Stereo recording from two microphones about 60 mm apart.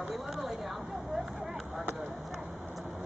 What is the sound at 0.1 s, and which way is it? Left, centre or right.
Vehicle, centre.